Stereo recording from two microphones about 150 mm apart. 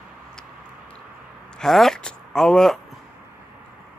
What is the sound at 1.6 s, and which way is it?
Speech, centre (ahead or behind).